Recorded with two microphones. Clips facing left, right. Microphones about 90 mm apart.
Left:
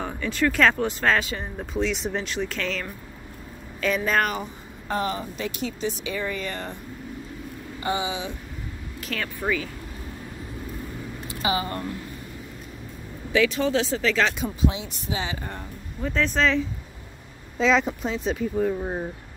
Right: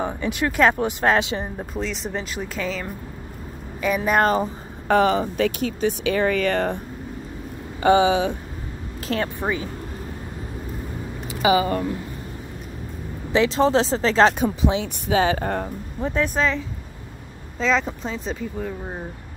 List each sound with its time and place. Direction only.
0.0 s speech: 15° right (ahead or behind)
1.7 s speech: centre (ahead or behind)
4.2 s speech: 35° right (ahead or behind)
4.8 s speech: 90° right
5.6 s speech: 55° right (ahead or behind)
7.8 s speech: 65° right (ahead or behind)
9.0 s speech: 30° right (ahead or behind)
13.3 s speech: 30° right (ahead or behind)
14.4 s speech: 60° right (ahead or behind)
16.0 s speech: 20° right (ahead or behind)
16.3 s speech: 5° right (ahead or behind)